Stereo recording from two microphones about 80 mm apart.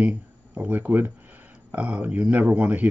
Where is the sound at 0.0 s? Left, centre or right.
Centre.